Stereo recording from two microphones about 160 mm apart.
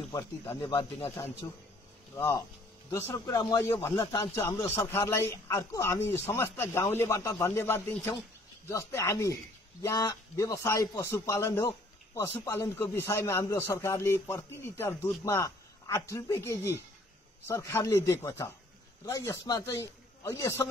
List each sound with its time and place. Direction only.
0.1 s a man's voice: 20° left (ahead or behind)